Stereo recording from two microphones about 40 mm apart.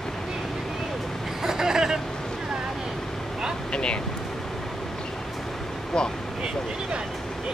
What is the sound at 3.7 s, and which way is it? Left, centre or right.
Vehicle, left.